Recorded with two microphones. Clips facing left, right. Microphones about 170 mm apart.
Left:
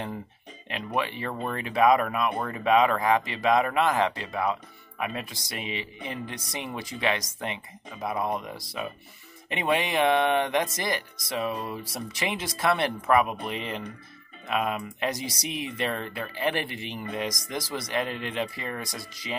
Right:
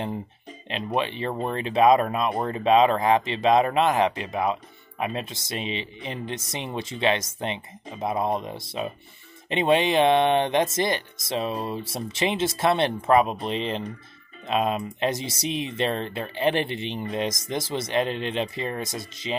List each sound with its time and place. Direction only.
0.7 s speech: 25° right (ahead or behind)